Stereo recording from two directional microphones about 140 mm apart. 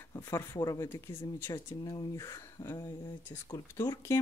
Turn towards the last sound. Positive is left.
turn(degrees=20)  # may be behind; listen again after turning